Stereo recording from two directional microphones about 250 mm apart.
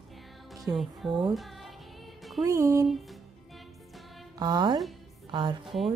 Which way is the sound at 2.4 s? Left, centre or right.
Centre.